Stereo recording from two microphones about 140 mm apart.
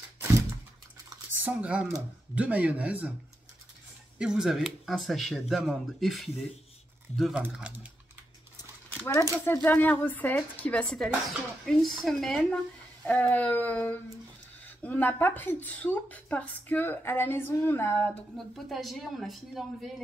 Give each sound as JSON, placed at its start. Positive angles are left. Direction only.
{"t": 0.2, "sound": "a sound", "side_deg": -20}
{"t": 1.4, "sound": "speech", "side_deg": -10}
{"t": 4.2, "sound": "speech", "side_deg": -5}
{"t": 9.0, "sound": "speech", "side_deg": 20}
{"t": 18.5, "sound": "speech", "side_deg": 0}